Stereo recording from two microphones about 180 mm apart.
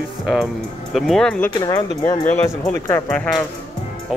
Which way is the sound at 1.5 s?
20° left (ahead or behind).